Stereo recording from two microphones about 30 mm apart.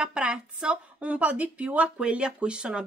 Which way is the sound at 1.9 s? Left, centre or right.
Right.